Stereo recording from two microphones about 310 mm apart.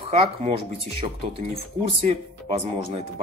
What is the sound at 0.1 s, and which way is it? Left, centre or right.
Speech, centre.